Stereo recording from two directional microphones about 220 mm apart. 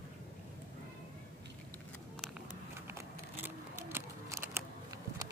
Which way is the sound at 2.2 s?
10° right (ahead or behind).